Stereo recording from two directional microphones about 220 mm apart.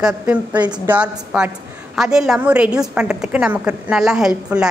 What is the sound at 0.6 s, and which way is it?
Speech, 20° right (ahead or behind).